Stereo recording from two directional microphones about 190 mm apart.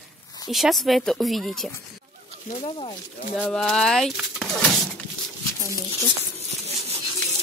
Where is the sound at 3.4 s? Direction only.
5° left (ahead or behind).